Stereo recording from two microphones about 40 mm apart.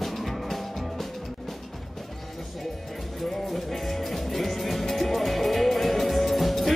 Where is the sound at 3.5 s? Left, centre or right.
Centre.